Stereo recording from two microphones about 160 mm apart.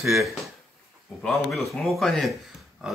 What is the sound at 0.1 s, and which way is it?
Speech, centre (ahead or behind).